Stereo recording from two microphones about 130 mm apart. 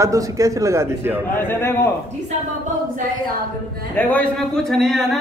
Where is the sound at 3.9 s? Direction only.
10° left (ahead or behind).